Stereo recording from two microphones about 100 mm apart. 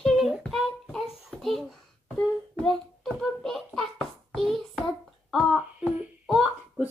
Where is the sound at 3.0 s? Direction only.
Centre (ahead or behind).